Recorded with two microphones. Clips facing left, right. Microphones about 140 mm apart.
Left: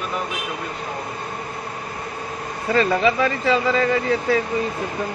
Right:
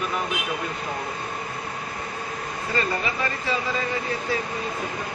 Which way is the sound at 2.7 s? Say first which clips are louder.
Left 9 dB; 90° left.